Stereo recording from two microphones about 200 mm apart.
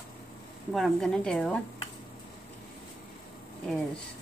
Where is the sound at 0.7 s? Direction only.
Centre (ahead or behind).